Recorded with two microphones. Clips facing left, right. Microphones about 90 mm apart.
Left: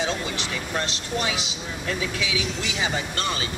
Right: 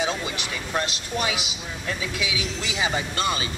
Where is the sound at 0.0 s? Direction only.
15° right (ahead or behind).